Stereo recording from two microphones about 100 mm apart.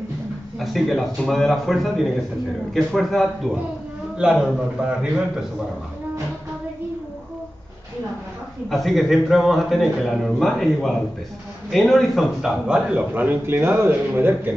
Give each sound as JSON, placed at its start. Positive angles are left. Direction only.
{"t": 0.6, "sound": "a man's voice", "side_deg": 0}
{"t": 8.6, "sound": "a man's voice", "side_deg": 0}